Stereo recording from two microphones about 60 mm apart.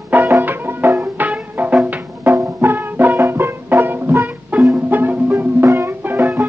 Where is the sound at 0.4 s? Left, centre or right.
Right.